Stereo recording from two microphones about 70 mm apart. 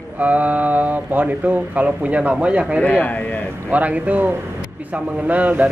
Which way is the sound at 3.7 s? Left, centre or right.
Right.